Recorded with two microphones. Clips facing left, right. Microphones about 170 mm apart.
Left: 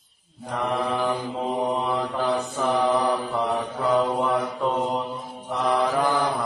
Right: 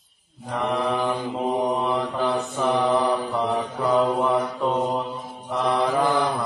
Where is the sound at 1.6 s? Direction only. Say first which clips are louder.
Even; 15° right (ahead or behind).